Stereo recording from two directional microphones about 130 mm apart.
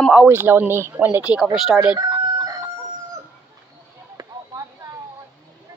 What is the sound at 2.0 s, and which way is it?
Chicken, 30° right (ahead or behind).